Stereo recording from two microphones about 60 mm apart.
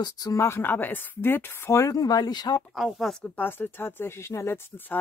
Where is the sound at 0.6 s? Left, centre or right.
Left.